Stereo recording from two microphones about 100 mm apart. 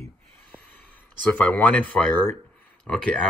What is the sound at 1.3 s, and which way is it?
Speech, 15° left (ahead or behind).